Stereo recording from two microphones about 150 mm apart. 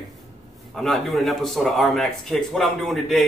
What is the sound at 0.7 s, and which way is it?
Speech, centre (ahead or behind).